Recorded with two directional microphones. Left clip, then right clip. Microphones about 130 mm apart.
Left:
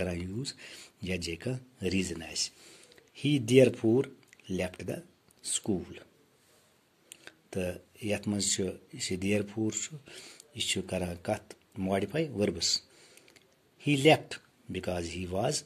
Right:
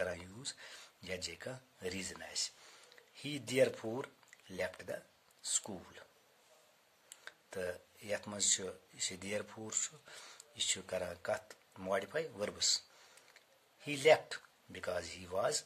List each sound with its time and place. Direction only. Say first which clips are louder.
0.0 s speech: left 5 dB; 20° left (ahead or behind)
7.1 s speech: left 4 dB; 15° left (ahead or behind)
13.8 s speech: left 5 dB; 20° left (ahead or behind)